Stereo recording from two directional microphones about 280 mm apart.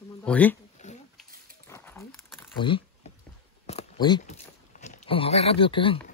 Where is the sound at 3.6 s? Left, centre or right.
Left.